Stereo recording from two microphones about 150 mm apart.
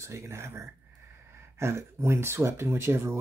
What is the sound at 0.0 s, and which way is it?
Speech, 20° right (ahead or behind).